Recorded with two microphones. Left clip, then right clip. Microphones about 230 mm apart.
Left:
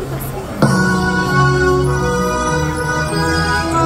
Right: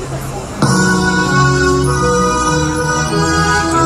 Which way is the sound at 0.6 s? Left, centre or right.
Right.